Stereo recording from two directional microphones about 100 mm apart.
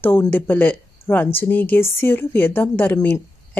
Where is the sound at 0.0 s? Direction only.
20° left (ahead or behind).